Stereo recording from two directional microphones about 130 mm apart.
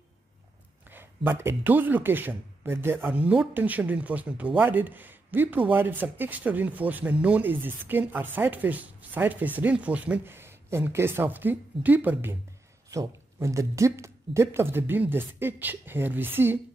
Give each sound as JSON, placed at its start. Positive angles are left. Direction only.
{"t": 0.8, "sound": "speech", "side_deg": -15}